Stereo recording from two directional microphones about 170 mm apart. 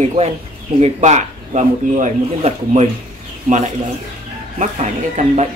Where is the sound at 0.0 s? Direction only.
40° right (ahead or behind).